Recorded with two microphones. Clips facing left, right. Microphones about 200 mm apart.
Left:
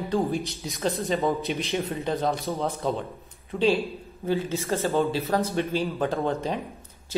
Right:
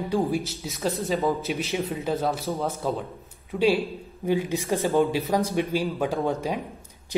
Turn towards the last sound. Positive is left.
turn(degrees=-15)  # may be behind; listen again after turning